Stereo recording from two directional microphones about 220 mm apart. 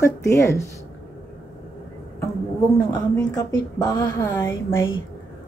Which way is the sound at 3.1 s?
15° left (ahead or behind).